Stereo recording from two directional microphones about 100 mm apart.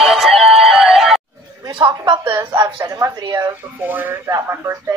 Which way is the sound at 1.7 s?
45° right (ahead or behind).